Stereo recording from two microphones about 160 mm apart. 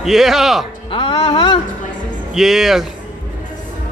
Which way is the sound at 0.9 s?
35° left (ahead or behind).